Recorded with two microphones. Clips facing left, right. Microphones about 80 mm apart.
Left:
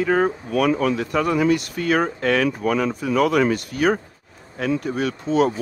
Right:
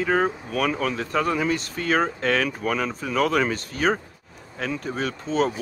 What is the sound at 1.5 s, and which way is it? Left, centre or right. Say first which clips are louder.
Speech: left 5 dB; right.